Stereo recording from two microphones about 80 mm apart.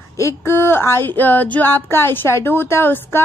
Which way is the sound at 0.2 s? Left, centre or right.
Left.